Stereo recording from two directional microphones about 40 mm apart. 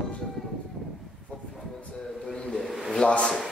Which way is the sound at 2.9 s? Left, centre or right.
Left.